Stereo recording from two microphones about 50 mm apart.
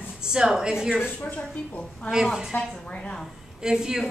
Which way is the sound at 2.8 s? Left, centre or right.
Left.